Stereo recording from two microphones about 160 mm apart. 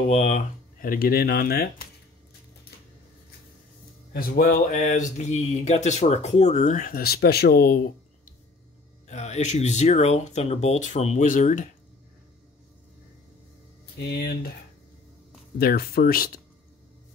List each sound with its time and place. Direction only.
0.1 s speech: 40° left (ahead or behind)
0.7 s speech: 65° left (ahead or behind)
4.1 s speech: 65° left (ahead or behind)
9.0 s speech: 45° left (ahead or behind)
13.9 s speech: 90° left
15.6 s speech: 70° left (ahead or behind)